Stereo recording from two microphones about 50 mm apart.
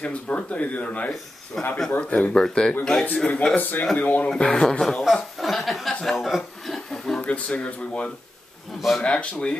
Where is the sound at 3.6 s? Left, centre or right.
Left.